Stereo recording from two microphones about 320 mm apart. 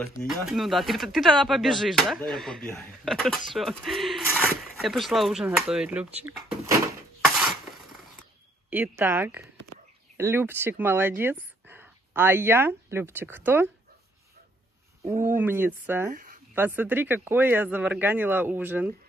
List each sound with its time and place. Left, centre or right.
0.2 s speech: centre
8.2 s a sound: centre
10.1 s speech: centre
15.2 s speech: centre
16.1 s a woman's voice: right
16.5 s speech: centre